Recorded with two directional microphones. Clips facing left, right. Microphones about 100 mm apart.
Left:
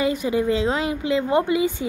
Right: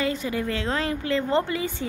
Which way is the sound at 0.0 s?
15° left (ahead or behind).